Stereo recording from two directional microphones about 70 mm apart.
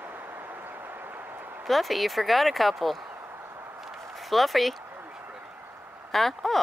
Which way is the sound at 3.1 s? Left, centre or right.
Right.